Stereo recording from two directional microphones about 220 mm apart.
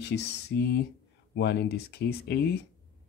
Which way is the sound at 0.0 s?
50° left (ahead or behind).